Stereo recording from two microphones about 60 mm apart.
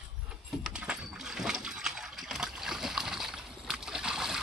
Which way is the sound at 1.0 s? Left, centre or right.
Centre.